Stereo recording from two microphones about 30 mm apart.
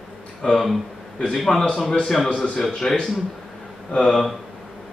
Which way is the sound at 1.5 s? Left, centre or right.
Left.